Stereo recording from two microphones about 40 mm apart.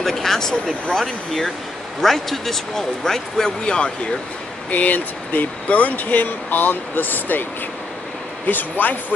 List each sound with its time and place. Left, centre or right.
0.0 s speech: centre
3.6 s speech: left
4.6 s speech: left
8.5 s speech: left